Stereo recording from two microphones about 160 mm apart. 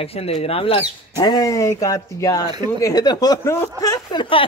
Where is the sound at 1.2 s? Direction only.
25° left (ahead or behind).